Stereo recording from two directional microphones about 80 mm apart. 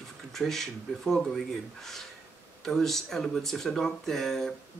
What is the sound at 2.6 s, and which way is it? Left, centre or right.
Speech, centre.